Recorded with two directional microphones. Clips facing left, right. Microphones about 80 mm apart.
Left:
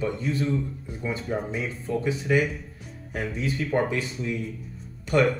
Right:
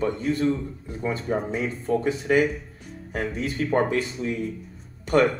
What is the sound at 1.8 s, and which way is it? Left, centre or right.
Speech, right.